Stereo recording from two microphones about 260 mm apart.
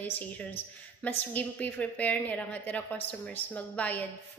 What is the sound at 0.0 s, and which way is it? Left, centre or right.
A woman's voice, centre.